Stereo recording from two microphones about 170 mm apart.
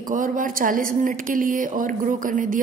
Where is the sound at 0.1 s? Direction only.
50° right (ahead or behind).